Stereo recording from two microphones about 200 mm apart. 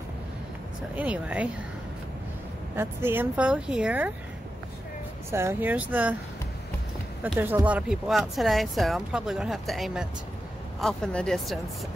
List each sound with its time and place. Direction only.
0.9 s speech: 5° right (ahead or behind)
2.7 s speech: 10° right (ahead or behind)
5.3 s speech: 10° right (ahead or behind)
7.2 s speech: 10° right (ahead or behind)